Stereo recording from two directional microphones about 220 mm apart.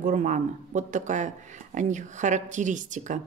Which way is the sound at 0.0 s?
35° right (ahead or behind).